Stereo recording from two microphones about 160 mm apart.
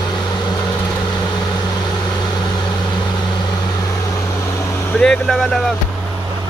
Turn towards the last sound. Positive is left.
turn(degrees=5)  # may be behind; listen again after turning